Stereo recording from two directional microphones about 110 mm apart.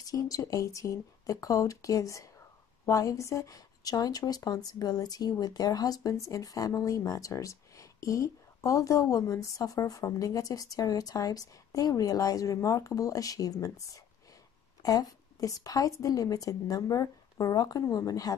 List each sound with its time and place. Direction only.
0.0 s speech: 30° left (ahead or behind)